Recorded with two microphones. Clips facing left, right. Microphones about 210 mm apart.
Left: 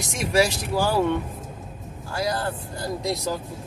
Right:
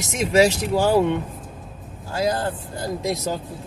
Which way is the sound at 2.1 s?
20° right (ahead or behind).